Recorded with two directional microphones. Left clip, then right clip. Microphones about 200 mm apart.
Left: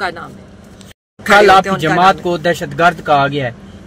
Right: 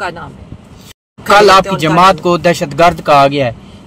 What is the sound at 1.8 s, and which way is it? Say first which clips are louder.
Speech: right 3 dB; 55° right (ahead or behind).